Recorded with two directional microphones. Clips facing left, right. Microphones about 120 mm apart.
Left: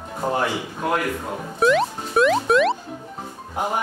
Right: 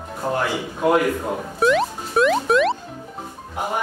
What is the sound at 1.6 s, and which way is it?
Music, centre (ahead or behind).